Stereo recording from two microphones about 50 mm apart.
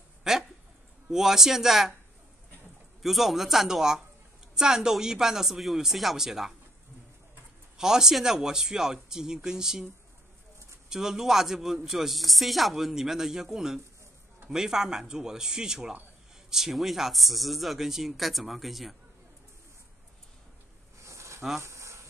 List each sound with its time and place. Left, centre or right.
0.2 s a sound: centre
1.1 s a man's voice: centre
3.0 s a man's voice: centre
7.7 s a man's voice: centre
10.9 s a man's voice: centre
21.0 s a sound: right